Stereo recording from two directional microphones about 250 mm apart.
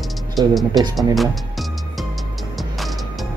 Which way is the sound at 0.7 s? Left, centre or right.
Centre.